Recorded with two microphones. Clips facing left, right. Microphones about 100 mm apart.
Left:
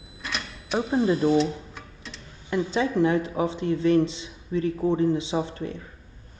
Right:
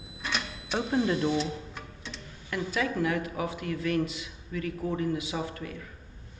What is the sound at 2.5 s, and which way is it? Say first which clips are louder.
Speech: left 6 dB; 25° left (ahead or behind).